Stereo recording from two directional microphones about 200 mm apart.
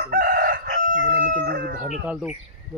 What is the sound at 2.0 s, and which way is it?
Speech, 5° right (ahead or behind).